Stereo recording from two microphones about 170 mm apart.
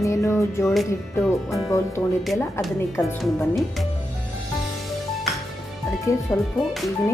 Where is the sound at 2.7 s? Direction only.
15° left (ahead or behind).